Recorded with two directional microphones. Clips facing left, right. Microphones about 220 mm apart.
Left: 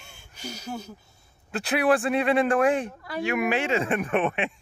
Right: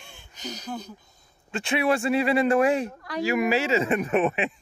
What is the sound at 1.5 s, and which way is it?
Speech, centre (ahead or behind).